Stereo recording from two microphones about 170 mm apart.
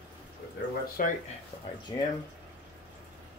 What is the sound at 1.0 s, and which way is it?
Speech, 55° left (ahead or behind).